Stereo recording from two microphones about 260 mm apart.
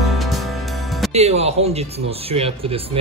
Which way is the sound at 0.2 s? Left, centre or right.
Centre.